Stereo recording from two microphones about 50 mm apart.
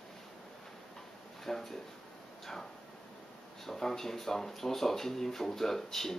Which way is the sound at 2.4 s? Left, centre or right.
Centre.